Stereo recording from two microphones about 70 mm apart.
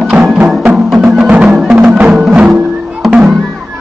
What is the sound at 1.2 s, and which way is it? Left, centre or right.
Music, centre.